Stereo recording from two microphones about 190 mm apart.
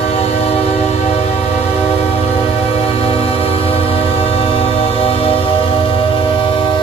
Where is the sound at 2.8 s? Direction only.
30° left (ahead or behind).